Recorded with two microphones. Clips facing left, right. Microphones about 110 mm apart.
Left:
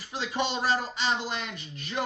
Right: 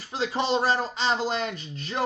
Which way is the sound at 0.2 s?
30° right (ahead or behind).